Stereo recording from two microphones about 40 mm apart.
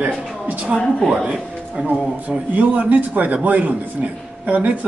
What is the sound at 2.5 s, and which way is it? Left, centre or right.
Speech, right.